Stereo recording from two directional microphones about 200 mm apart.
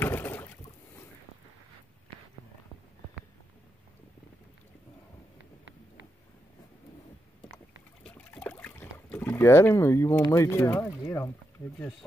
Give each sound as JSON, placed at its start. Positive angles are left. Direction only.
{"t": 0.0, "sound": "rowboat", "side_deg": 10}
{"t": 8.0, "sound": "boat", "side_deg": 5}
{"t": 10.3, "sound": "speech", "side_deg": 15}